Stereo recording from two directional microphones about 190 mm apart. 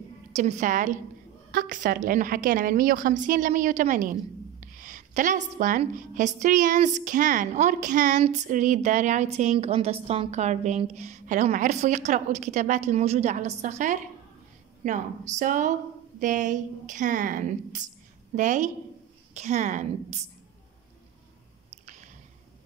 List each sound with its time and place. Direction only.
0.3 s a woman's voice: 40° right (ahead or behind)
21.8 s squish: 40° right (ahead or behind)